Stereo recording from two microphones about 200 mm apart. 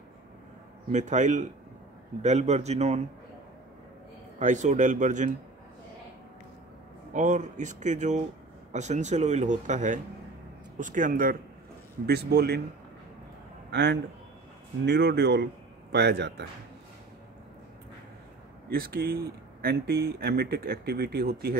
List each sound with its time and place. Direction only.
0.9 s speech: 35° right (ahead or behind)
4.4 s speech: 40° right (ahead or behind)
7.2 s speech: 40° right (ahead or behind)
12.1 s a man's voice: 55° right (ahead or behind)
13.7 s a man's voice: 60° right (ahead or behind)
18.7 s speech: 50° right (ahead or behind)